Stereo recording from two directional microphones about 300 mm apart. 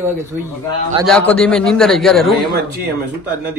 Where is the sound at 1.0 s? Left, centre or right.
Centre.